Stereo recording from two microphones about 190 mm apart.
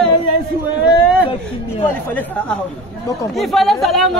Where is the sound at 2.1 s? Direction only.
10° left (ahead or behind).